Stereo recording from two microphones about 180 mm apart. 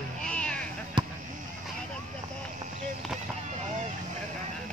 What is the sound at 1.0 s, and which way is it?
Basketball bounce, 25° right (ahead or behind).